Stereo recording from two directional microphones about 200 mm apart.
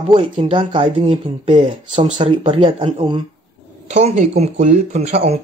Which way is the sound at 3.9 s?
35° right (ahead or behind).